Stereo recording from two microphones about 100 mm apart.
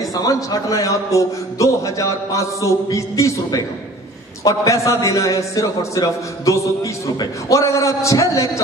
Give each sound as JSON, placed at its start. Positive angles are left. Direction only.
{"t": 0.1, "sound": "a man's voice", "side_deg": 35}